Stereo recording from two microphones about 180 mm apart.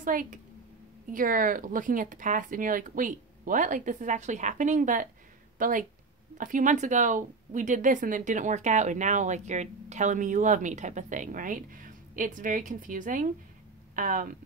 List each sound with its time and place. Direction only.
0.0 s speech: 45° right (ahead or behind)